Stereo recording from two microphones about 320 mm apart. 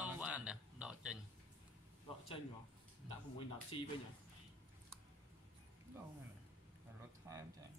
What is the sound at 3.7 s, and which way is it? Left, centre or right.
Speech, centre.